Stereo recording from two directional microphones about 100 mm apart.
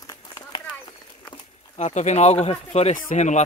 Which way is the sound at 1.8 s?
90° left.